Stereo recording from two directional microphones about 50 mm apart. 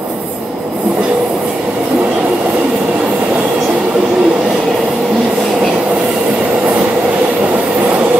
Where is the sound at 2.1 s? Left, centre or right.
Right.